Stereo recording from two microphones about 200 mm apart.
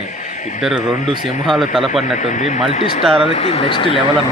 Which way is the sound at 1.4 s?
Centre (ahead or behind).